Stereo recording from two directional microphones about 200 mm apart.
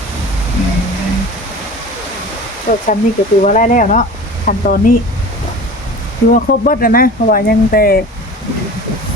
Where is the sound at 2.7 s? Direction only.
45° left (ahead or behind).